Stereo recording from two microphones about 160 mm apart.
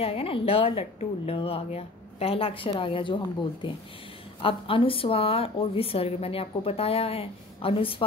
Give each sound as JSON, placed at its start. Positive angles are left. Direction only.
{"t": 0.0, "sound": "a woman's voice", "side_deg": 35}
{"t": 4.4, "sound": "a woman's voice", "side_deg": 35}